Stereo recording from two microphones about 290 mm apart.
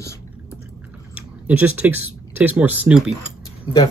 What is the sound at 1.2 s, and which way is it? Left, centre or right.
Speech, centre.